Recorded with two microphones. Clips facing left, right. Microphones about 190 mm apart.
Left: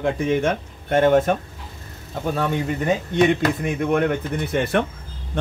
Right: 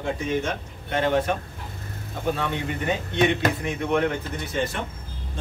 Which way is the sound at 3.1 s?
50° left (ahead or behind).